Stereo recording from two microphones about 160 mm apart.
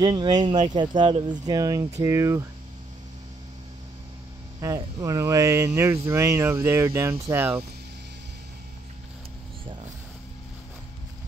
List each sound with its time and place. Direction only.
0.0 s speech: 25° right (ahead or behind)
4.6 s speech: 20° right (ahead or behind)